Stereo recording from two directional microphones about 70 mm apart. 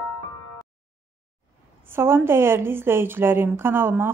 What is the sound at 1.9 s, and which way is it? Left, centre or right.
A woman's voice, right.